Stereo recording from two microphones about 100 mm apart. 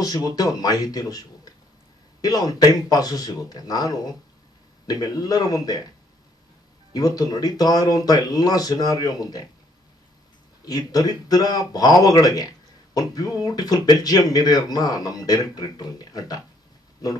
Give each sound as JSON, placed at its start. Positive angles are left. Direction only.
{"t": 0.0, "sound": "speech", "side_deg": 40}
{"t": 6.9, "sound": "speech", "side_deg": 40}
{"t": 10.6, "sound": "speech", "side_deg": 40}